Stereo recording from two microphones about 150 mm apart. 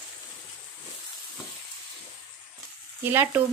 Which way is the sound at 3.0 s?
15° right (ahead or behind).